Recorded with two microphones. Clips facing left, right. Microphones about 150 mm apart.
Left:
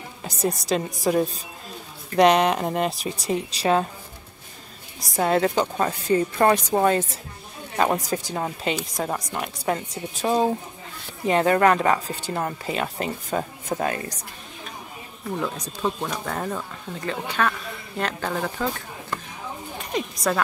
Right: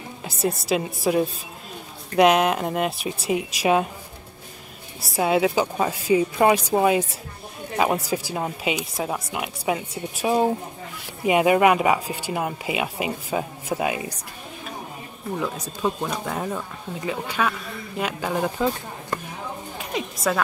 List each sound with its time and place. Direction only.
0.2 s speech: 5° right (ahead or behind)
5.1 s speech: 5° right (ahead or behind)
15.3 s speech: 5° right (ahead or behind)
19.8 s a woman's voice: 5° right (ahead or behind)